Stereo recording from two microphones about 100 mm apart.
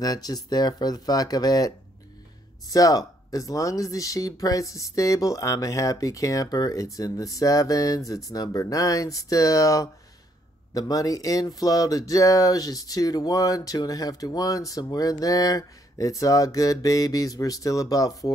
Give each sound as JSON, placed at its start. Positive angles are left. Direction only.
{"t": 0.0, "sound": "speech", "side_deg": 40}
{"t": 2.7, "sound": "speech", "side_deg": 35}